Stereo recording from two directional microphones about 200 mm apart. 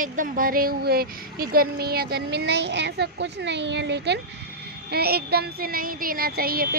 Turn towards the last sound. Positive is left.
turn(degrees=-50)  # may be behind; listen again after turning